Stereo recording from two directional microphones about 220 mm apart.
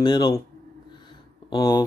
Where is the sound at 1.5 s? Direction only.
20° left (ahead or behind).